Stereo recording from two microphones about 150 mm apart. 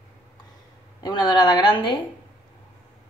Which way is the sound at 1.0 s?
30° left (ahead or behind).